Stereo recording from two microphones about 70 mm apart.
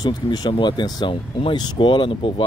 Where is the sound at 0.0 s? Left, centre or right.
Left.